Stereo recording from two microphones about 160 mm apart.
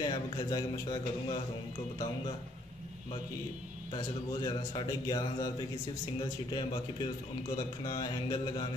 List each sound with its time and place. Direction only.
0.0 s a man's voice: 25° left (ahead or behind)
3.9 s a man's voice: 30° left (ahead or behind)